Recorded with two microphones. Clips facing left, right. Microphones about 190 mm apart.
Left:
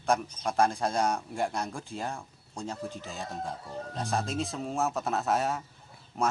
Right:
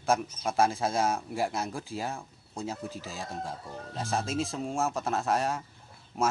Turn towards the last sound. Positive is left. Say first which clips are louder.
# right 1 dB
turn(degrees=-5)  # may be behind; listen again after turning